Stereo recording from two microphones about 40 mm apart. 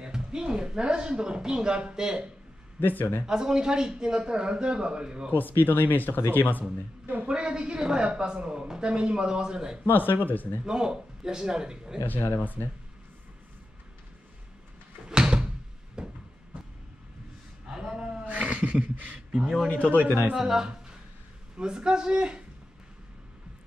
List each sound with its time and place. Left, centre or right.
0.0 s speech: centre
2.8 s speech: left
3.3 s a man's voice: centre
5.3 s speech: left
7.2 s a man's voice: right
9.8 s speech: left
10.6 s a man's voice: right
15.0 s door: right
16.0 s a sound: right
17.6 s a sound: centre
18.2 s speech: right
19.4 s a man's voice: centre
19.7 s speech: left
20.3 s a man's voice: centre